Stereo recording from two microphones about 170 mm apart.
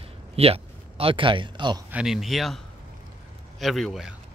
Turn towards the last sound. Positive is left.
turn(degrees=0)  # may be behind; listen again after turning